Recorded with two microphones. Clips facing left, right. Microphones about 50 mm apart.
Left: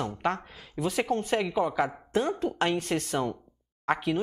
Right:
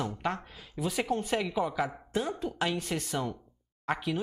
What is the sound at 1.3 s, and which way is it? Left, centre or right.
Speech, centre.